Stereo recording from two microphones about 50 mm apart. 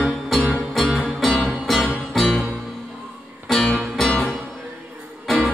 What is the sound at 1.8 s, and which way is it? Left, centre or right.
Music, left.